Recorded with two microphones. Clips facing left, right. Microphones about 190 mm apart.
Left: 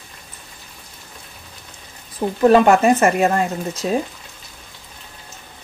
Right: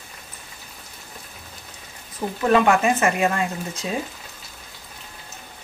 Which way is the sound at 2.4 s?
40° left (ahead or behind).